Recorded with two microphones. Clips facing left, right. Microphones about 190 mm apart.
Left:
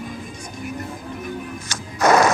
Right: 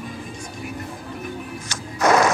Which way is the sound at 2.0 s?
40° left (ahead or behind).